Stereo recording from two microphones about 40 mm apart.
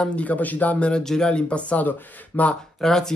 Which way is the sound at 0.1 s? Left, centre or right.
Left.